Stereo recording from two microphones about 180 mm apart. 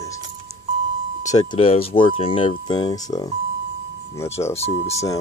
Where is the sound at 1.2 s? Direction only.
20° left (ahead or behind).